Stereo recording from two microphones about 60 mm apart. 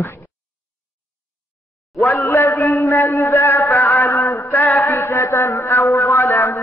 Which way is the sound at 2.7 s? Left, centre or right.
Left.